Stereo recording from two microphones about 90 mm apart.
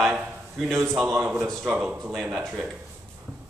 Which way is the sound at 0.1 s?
5° right (ahead or behind).